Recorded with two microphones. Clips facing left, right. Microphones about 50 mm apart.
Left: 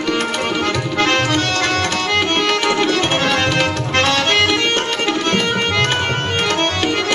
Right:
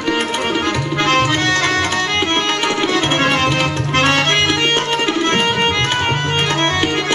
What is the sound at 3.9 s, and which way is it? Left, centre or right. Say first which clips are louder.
Music: right 1 dB; right.